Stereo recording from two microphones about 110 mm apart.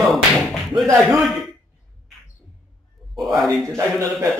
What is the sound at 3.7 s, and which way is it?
Speech, 30° right (ahead or behind).